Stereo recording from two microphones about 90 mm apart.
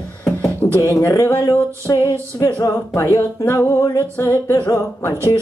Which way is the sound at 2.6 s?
35° left (ahead or behind).